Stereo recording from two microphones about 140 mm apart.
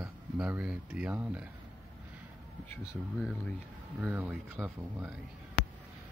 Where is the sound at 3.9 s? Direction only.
10° right (ahead or behind).